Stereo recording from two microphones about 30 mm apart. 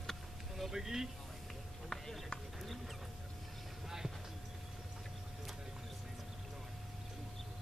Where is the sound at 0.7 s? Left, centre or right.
Centre.